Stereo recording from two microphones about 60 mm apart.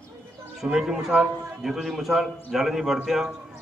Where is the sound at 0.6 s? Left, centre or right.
Centre.